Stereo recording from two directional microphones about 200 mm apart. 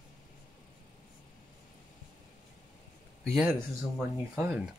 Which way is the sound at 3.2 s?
Centre (ahead or behind).